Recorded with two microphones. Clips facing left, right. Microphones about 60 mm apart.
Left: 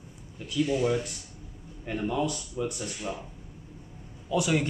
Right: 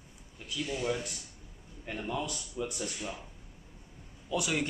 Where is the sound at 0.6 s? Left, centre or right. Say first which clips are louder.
Left 5 dB; centre.